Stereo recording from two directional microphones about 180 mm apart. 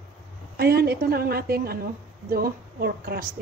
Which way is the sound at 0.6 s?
60° right (ahead or behind).